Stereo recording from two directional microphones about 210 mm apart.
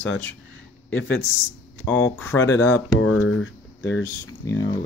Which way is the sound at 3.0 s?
70° left (ahead or behind).